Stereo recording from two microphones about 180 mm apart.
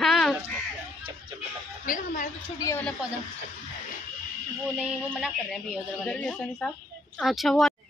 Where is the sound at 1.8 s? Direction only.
50° left (ahead or behind).